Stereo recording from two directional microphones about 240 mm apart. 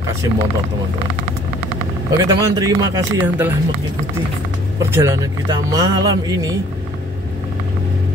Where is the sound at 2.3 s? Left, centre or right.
Centre.